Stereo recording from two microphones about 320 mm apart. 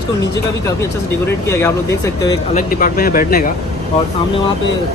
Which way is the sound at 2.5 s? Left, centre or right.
Left.